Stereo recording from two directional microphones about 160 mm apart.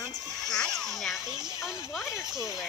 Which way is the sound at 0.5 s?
5° left (ahead or behind).